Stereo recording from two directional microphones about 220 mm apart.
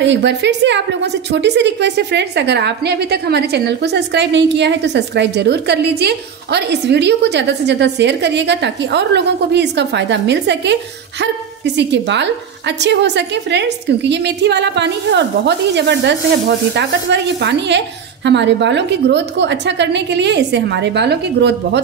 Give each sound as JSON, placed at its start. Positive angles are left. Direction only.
{"t": 0.0, "sound": "a woman's voice", "side_deg": -55}